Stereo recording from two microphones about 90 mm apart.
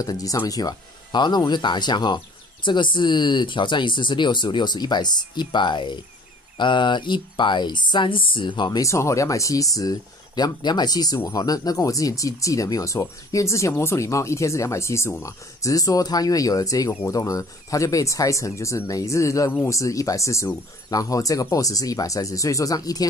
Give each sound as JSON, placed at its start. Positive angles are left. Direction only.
{"t": 0.0, "sound": "speech", "side_deg": 40}
{"t": 8.6, "sound": "speech", "side_deg": 40}